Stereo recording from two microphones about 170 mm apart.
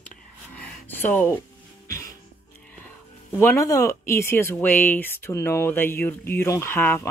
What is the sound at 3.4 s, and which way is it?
Speech, 15° left (ahead or behind).